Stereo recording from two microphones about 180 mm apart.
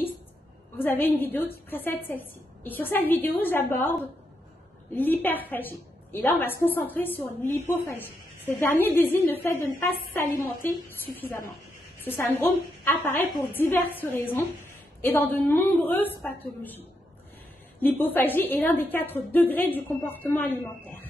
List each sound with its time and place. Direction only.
0.7 s a woman's voice: 10° left (ahead or behind)
4.9 s a woman's voice: 10° left (ahead or behind)